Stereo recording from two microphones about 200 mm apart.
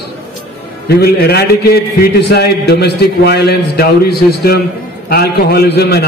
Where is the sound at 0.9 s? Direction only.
55° left (ahead or behind).